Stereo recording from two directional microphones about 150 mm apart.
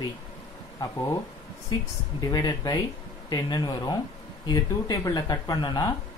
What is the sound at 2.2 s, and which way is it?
Speech, 25° left (ahead or behind).